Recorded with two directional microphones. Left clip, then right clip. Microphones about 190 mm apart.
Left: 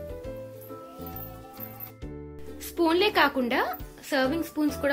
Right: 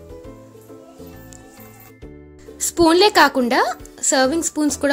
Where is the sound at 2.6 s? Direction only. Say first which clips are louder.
Right 10 dB; 50° right (ahead or behind).